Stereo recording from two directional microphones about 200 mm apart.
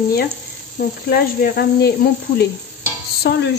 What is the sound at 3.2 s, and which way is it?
Speech, 55° left (ahead or behind).